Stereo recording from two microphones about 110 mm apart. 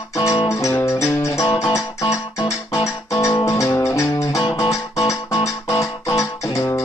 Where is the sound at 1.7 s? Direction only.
30° left (ahead or behind).